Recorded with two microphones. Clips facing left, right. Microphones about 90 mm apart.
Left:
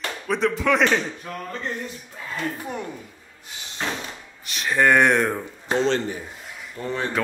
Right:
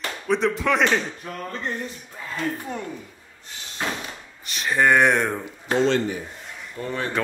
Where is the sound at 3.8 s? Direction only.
10° right (ahead or behind).